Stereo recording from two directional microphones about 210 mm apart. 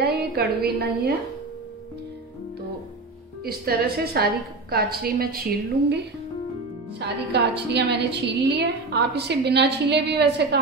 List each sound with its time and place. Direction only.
0.0 s a woman's voice: 50° right (ahead or behind)
3.4 s a woman's voice: 45° right (ahead or behind)
7.0 s a woman's voice: 55° right (ahead or behind)